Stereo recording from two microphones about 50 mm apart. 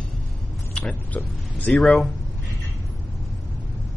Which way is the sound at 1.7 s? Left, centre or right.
Centre.